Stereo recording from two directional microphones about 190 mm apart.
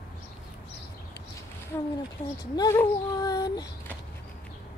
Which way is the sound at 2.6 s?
15° left (ahead or behind).